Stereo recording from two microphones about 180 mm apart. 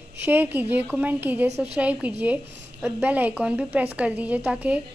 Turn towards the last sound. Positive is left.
turn(degrees=-5)  # may be behind; listen again after turning